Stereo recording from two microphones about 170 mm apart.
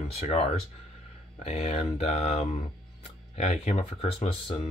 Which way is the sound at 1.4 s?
40° left (ahead or behind).